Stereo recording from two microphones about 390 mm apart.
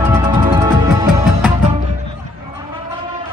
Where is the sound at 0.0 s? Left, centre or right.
Centre.